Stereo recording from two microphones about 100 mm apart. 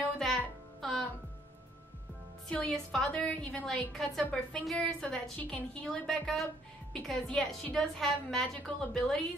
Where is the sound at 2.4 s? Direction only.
10° left (ahead or behind).